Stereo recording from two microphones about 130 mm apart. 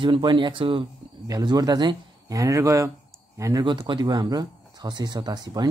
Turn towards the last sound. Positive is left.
turn(degrees=-35)  # may be behind; listen again after turning